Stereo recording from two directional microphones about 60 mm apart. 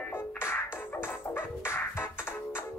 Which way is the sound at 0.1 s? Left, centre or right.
Left.